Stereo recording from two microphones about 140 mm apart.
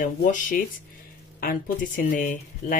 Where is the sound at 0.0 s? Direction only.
75° left (ahead or behind).